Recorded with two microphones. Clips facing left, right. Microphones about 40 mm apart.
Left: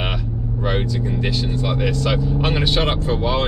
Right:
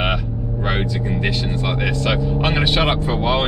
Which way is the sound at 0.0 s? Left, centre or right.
Centre.